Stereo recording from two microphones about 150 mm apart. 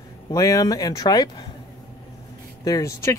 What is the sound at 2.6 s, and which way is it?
Speech, 20° left (ahead or behind).